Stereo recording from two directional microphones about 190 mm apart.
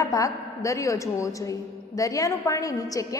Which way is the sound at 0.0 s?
15° left (ahead or behind).